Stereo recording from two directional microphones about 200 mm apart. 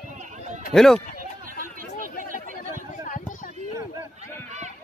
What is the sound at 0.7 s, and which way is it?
Speech, centre (ahead or behind).